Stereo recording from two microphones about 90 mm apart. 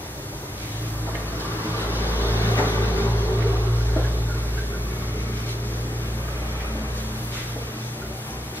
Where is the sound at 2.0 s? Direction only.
20° left (ahead or behind).